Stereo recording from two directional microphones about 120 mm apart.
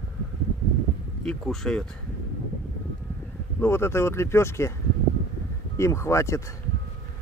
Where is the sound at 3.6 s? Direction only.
20° left (ahead or behind).